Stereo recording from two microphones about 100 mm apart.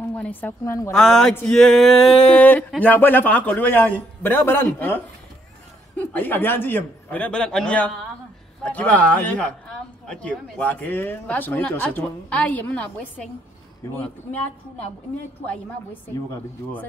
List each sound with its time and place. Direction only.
0.1 s a woman's voice: 15° left (ahead or behind)
0.9 s speech: 5° left (ahead or behind)
1.5 s a sound: 5° left (ahead or behind)
2.3 s a man's voice: 15° left (ahead or behind)
15.4 s speech: 15° left (ahead or behind)